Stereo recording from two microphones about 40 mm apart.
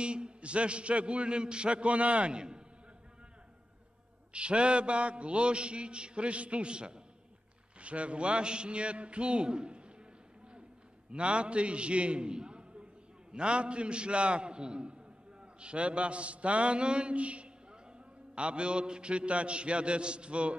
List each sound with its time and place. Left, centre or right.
0.0 s a man's voice: right
4.3 s a man's voice: right
11.1 s a man's voice: right